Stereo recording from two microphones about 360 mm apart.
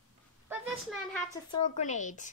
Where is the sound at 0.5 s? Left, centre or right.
Centre.